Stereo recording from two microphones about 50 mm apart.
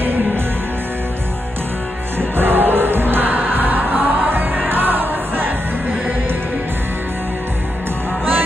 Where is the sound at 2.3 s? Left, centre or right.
Right.